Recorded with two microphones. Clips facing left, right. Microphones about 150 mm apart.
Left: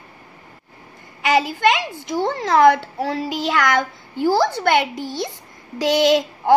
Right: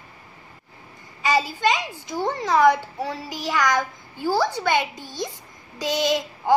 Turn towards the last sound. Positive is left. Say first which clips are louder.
# left 5 dB
turn(degrees=70)  # may be behind; listen again after turning